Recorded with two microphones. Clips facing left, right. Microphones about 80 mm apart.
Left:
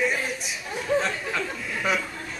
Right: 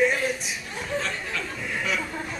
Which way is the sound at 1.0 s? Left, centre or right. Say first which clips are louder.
Left 3 dB; left.